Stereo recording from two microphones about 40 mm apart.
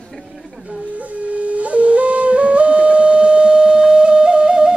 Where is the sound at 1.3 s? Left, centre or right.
Right.